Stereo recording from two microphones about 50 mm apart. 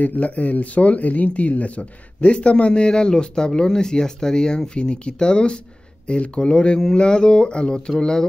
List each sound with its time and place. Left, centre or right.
0.0 s speech: left; by 8.3 s centre